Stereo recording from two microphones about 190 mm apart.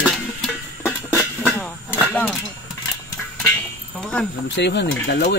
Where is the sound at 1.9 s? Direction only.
5° left (ahead or behind).